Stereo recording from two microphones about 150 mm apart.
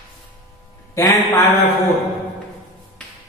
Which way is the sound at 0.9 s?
20° left (ahead or behind).